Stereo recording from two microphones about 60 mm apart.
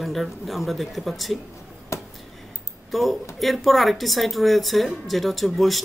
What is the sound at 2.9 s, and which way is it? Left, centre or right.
Speech, centre.